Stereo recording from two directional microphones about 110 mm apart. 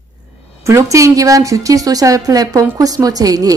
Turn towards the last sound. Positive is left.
turn(degrees=-35)  # may be behind; listen again after turning